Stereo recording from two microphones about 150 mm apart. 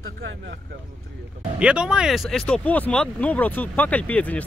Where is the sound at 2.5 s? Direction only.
10° left (ahead or behind).